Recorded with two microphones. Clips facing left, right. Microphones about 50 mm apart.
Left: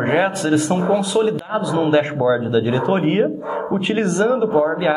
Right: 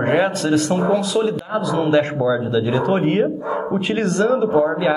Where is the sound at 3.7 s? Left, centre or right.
Centre.